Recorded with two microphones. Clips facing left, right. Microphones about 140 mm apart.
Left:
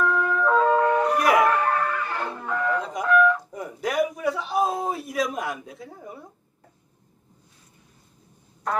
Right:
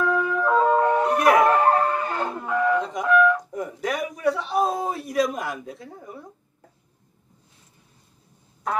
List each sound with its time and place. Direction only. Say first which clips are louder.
0.0 s wind instrument: even; 5° right (ahead or behind)
0.7 s music: right 1 dB; 25° right (ahead or behind)
1.0 s music: right 2 dB; centre (ahead or behind)
1.5 s ambulance: right 4 dB; 35° right (ahead or behind)
2.4 s music: right 4 dB; 5° right (ahead or behind)
3.3 s a man's voice: right 4 dB; centre (ahead or behind)